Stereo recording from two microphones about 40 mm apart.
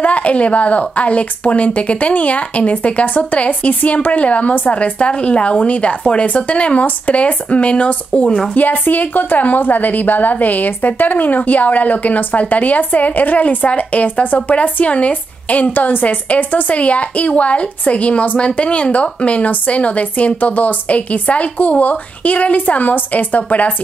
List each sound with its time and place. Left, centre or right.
0.0 s a woman's voice: left
4.9 s a woman's voice: left
8.5 s a woman's voice: left
15.7 s a woman's voice: left